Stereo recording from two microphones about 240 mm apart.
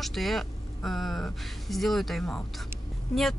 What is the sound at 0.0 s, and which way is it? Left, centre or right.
Speech, centre.